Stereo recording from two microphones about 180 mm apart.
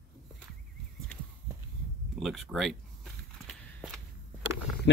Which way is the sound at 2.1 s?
Centre (ahead or behind).